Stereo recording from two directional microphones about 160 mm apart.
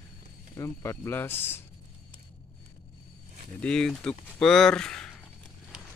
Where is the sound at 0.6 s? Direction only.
20° left (ahead or behind).